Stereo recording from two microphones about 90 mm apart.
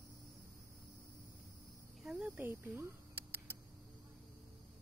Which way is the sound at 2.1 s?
20° right (ahead or behind).